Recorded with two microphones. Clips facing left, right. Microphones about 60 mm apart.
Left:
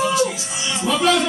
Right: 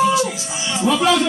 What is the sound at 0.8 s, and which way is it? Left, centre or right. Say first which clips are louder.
Speech: right 4 dB; centre.